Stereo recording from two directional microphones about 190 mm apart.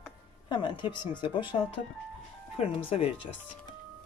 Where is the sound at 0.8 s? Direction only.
25° left (ahead or behind).